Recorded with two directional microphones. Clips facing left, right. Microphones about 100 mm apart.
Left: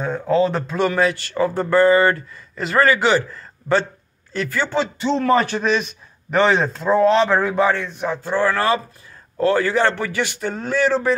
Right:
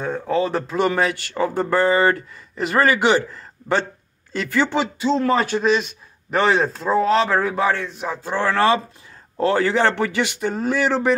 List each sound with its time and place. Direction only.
0.3 s a man's voice: 5° right (ahead or behind)
4.5 s a man's voice: 15° right (ahead or behind)